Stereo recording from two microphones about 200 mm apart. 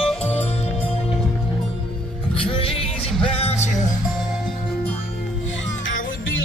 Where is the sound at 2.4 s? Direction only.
25° left (ahead or behind).